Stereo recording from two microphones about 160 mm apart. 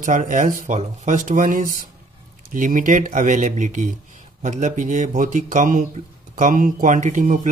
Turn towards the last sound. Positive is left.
turn(degrees=-50)  # may be behind; listen again after turning